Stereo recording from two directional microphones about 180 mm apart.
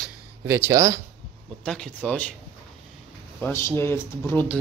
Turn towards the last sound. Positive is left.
turn(degrees=10)  # may be behind; listen again after turning